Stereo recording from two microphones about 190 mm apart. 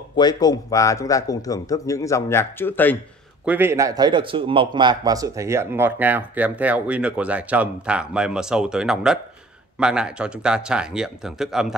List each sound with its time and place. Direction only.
0.1 s speech: 20° left (ahead or behind)
3.4 s speech: 10° right (ahead or behind)